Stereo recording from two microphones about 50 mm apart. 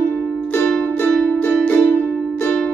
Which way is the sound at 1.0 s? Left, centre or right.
Left.